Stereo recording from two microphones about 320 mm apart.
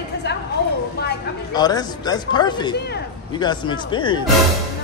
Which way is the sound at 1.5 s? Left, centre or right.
Centre.